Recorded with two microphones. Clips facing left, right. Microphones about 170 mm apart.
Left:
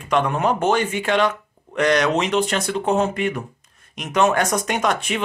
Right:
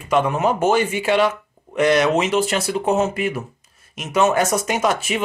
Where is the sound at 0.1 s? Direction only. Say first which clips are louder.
Right 1 dB; 5° right (ahead or behind).